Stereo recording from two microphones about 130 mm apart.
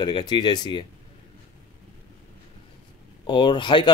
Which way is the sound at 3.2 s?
40° left (ahead or behind).